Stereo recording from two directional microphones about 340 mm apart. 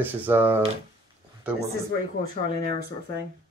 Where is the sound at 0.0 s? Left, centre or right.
Centre.